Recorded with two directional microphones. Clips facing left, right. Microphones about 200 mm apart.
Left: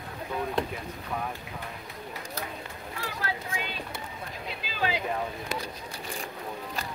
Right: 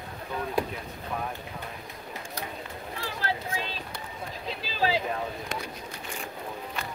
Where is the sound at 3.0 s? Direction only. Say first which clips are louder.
Right 2 dB; 30° right (ahead or behind).